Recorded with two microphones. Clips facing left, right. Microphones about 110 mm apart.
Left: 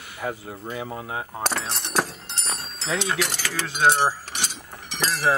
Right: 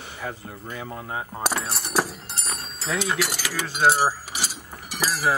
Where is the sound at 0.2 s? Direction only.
10° left (ahead or behind).